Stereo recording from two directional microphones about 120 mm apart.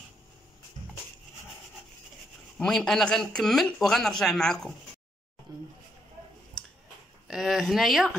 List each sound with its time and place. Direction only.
2.6 s speech: 5° left (ahead or behind)
5.5 s a sound: 35° right (ahead or behind)
7.2 s speech: centre (ahead or behind)